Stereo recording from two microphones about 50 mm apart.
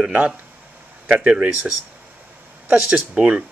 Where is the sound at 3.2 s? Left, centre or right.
Right.